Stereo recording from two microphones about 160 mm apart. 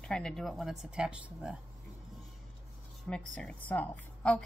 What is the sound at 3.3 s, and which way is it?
A woman's voice, 10° left (ahead or behind).